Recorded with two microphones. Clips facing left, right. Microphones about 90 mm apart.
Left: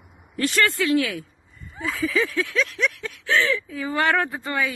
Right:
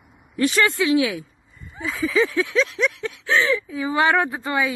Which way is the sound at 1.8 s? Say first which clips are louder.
Right 3 dB; 20° right (ahead or behind).